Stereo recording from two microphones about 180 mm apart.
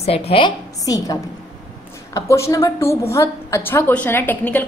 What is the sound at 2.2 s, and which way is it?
A woman's voice, 15° left (ahead or behind).